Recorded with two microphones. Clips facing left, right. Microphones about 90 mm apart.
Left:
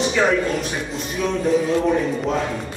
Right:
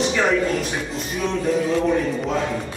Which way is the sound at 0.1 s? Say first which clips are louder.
Left 1 dB; centre (ahead or behind).